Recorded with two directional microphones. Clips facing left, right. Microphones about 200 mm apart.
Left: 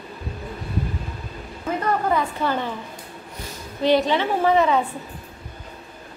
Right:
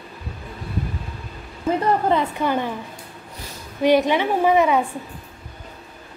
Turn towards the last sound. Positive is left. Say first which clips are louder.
# right 1 dB
turn(degrees=-15)  # may be behind; listen again after turning